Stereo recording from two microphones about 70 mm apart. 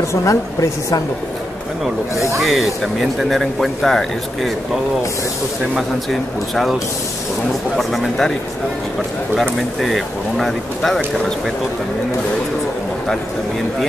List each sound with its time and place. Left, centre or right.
0.1 s a woman's voice: left
2.4 s speech: centre
5.8 s speech: centre
9.4 s speech: centre